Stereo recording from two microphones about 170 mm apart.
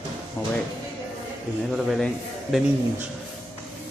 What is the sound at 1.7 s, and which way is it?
Speech, centre (ahead or behind).